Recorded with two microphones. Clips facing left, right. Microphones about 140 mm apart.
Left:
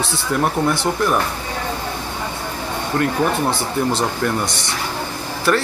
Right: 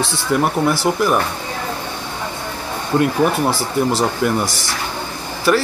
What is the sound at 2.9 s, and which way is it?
Speech, 20° right (ahead or behind).